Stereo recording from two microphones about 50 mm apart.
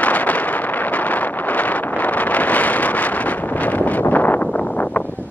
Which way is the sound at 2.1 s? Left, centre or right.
Left.